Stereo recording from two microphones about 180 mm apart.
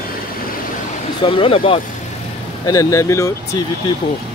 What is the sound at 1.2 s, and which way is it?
Speech, 30° left (ahead or behind).